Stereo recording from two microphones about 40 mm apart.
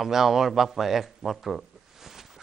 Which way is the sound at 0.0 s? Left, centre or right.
Centre.